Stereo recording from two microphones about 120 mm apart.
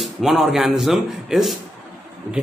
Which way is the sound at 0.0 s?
Centre (ahead or behind).